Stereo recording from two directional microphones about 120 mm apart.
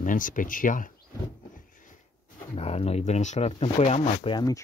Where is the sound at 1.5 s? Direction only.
90° left.